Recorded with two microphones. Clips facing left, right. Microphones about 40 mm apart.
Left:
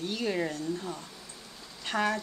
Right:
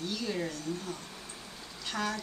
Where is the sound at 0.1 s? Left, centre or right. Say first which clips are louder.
Left 5 dB; left.